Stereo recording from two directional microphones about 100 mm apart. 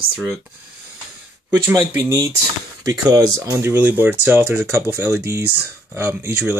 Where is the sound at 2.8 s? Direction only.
35° right (ahead or behind).